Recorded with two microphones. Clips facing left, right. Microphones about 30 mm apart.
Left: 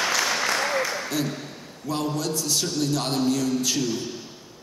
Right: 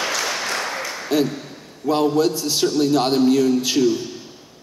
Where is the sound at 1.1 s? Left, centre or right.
Right.